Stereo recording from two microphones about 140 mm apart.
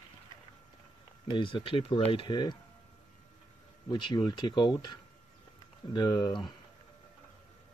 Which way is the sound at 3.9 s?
35° left (ahead or behind).